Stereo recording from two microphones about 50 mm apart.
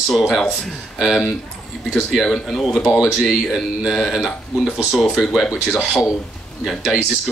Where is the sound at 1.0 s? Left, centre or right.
Centre.